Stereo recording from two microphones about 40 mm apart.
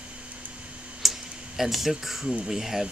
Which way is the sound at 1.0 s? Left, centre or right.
Centre.